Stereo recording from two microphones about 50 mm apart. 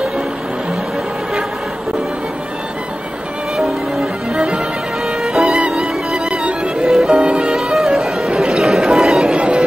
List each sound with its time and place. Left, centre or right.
3.5 s music: centre
5.7 s music: centre
7.7 s music: centre
8.4 s a sound: centre
9.4 s music: right